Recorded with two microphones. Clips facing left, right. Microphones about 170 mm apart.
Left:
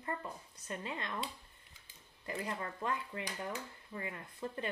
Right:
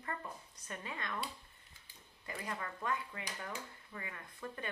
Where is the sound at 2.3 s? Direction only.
25° left (ahead or behind).